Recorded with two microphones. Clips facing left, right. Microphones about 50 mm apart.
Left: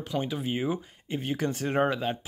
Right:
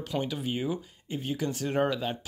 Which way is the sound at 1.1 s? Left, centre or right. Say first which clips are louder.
Left 2 dB; left.